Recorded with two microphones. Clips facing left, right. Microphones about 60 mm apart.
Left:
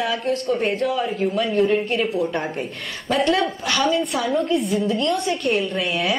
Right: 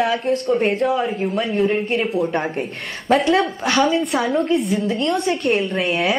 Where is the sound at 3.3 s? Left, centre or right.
Right.